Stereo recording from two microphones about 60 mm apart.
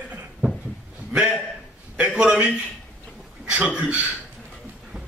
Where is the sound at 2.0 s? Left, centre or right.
Centre.